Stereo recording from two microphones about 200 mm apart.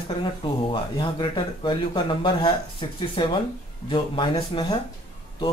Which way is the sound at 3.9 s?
25° left (ahead or behind).